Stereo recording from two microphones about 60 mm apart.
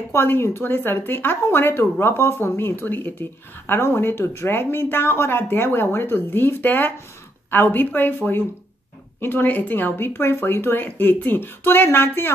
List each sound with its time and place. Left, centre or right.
0.1 s speech: left